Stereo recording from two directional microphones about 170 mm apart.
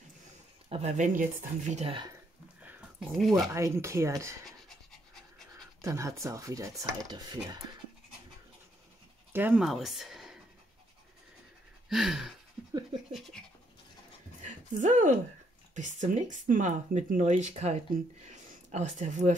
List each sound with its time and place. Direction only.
0.7 s speech: 40° right (ahead or behind)
2.6 s a sound: centre (ahead or behind)
3.5 s speech: 15° right (ahead or behind)
4.5 s a sound: centre (ahead or behind)
5.8 s speech: 20° right (ahead or behind)
9.3 s speech: 10° right (ahead or behind)
11.9 s a sound: centre (ahead or behind)
14.4 s music: 45° right (ahead or behind)
15.7 s speech: 45° right (ahead or behind)